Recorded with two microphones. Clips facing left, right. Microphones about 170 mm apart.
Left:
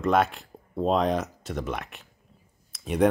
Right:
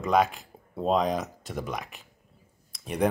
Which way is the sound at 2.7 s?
Centre (ahead or behind).